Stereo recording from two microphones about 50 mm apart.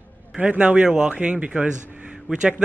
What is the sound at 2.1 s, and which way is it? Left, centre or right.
Speech, centre.